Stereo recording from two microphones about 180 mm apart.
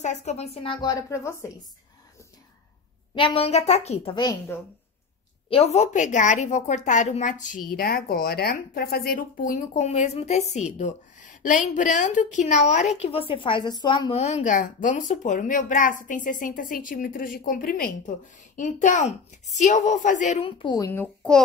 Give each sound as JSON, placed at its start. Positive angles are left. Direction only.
{"t": 0.0, "sound": "a woman's voice", "side_deg": 40}
{"t": 3.2, "sound": "a child's voice", "side_deg": 30}
{"t": 5.5, "sound": "a child's voice", "side_deg": 35}
{"t": 7.7, "sound": "speech", "side_deg": 55}
{"t": 18.6, "sound": "a child's voice", "side_deg": 45}